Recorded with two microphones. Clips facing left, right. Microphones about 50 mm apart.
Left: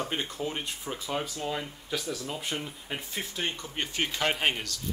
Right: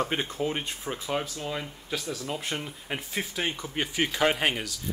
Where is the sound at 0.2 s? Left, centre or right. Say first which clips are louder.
Right 3 dB; centre.